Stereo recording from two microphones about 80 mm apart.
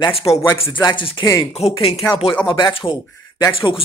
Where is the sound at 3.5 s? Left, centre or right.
Left.